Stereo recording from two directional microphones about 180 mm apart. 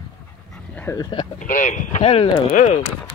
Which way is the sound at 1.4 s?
45° left (ahead or behind).